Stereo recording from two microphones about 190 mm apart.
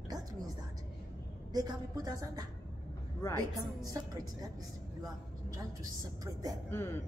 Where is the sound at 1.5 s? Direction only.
20° right (ahead or behind).